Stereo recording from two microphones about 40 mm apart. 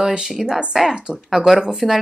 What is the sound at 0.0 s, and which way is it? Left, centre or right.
Speech, centre.